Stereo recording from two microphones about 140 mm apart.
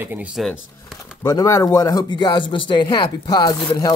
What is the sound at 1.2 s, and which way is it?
Speech, 25° left (ahead or behind).